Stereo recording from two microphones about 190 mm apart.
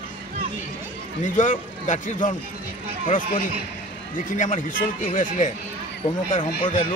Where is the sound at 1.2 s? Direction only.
40° left (ahead or behind).